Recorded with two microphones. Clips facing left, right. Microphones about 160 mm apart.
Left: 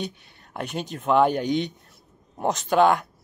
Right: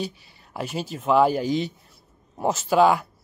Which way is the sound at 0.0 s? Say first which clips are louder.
Right 1 dB; centre (ahead or behind).